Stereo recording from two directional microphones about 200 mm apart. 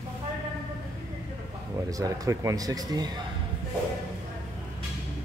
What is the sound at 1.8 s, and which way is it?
Speech, 15° right (ahead or behind).